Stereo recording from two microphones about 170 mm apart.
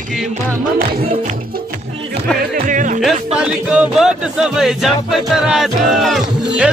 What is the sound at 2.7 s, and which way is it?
Music, 50° right (ahead or behind).